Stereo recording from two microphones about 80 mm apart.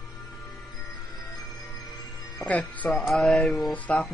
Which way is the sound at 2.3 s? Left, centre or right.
Centre.